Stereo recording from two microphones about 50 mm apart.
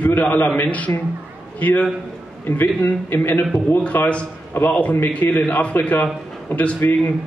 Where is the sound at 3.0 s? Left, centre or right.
Left.